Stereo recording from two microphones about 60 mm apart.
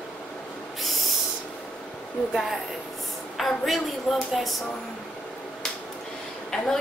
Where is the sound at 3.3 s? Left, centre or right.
Centre.